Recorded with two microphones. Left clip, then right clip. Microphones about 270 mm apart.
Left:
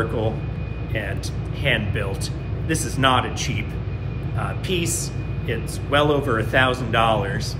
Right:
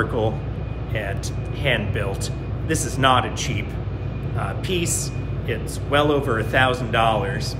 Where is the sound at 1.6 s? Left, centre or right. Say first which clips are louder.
Even; centre.